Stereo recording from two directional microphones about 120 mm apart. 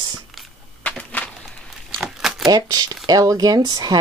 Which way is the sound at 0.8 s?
10° left (ahead or behind).